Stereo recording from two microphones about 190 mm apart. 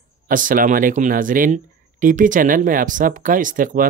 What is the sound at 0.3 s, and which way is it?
Speech, 45° right (ahead or behind).